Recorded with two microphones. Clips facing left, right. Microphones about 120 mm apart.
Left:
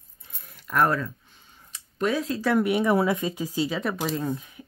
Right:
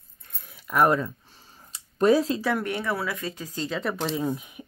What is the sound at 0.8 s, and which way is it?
Speech, 20° right (ahead or behind).